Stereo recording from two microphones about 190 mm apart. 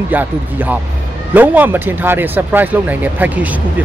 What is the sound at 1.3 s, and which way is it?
Speech, 10° right (ahead or behind).